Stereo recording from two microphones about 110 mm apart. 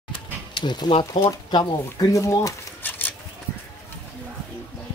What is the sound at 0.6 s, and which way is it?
Speech, 45° left (ahead or behind).